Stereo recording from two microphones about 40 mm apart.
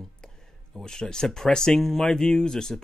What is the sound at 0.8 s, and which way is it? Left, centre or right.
A man's voice, centre.